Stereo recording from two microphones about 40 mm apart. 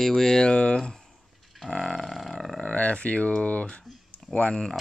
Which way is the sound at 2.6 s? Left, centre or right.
Left.